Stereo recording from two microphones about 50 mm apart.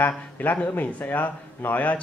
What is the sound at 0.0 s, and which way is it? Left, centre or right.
Speech, left.